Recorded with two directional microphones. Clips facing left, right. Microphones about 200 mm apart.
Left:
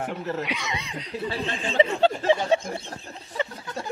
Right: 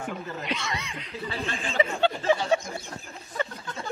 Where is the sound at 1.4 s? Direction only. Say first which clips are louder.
Left 4 dB; 25° left (ahead or behind).